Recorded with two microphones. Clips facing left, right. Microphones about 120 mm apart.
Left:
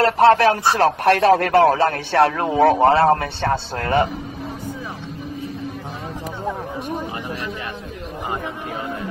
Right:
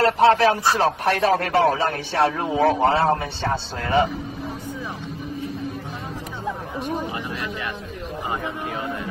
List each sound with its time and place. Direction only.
0.2 s speech: 65° left (ahead or behind)